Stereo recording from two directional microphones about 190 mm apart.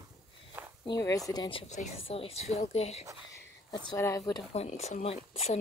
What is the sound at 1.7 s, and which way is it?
Speech, 35° left (ahead or behind).